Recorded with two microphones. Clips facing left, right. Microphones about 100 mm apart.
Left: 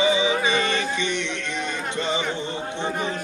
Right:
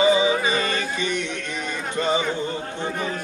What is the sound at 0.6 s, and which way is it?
Music, 25° left (ahead or behind).